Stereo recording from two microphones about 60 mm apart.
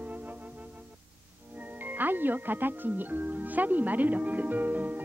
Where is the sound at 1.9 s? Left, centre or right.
Right.